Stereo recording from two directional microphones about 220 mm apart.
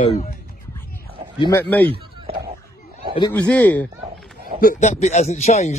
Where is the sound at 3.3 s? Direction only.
5° left (ahead or behind).